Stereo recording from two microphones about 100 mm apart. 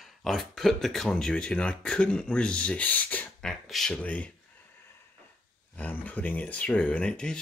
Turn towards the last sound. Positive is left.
turn(degrees=10)  # may be behind; listen again after turning